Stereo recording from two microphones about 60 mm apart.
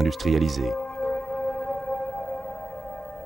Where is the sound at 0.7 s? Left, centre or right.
Left.